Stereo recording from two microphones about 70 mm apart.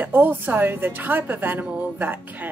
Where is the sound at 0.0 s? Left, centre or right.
Right.